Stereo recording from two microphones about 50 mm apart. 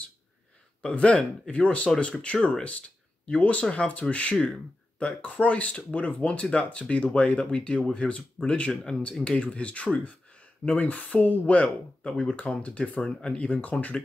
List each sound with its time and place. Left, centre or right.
0.8 s speech: left
10.0 s a sound: left
10.8 s speech: left